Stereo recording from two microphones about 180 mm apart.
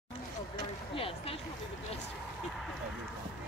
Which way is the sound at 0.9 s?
30° left (ahead or behind).